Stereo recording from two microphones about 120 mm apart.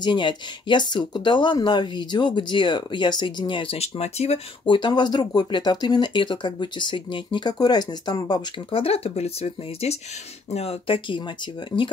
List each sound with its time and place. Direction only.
0.0 s speech: 40° left (ahead or behind); by 4.4 s 60° left (ahead or behind)
4.6 s speech: 40° left (ahead or behind)
8.7 s speech: 55° left (ahead or behind)